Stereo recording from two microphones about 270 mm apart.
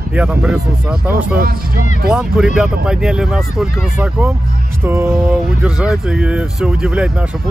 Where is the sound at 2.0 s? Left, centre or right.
Centre.